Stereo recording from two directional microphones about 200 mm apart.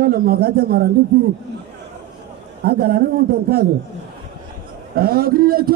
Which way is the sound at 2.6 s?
50° right (ahead or behind).